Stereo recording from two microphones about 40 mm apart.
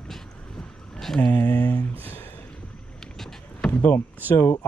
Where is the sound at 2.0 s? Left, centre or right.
Left.